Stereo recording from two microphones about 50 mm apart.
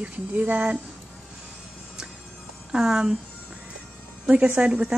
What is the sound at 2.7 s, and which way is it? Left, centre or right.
Speech, centre.